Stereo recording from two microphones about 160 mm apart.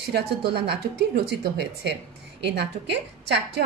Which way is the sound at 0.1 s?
90° right.